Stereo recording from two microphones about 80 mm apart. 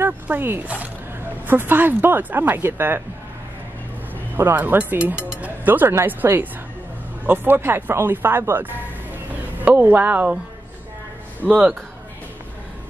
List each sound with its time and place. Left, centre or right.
0.0 s speech: right
4.6 s speech: right
5.1 s music: right
5.9 s a woman's voice: right